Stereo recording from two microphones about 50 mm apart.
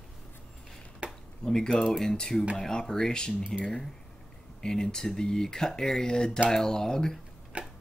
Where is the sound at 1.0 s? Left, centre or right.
Right.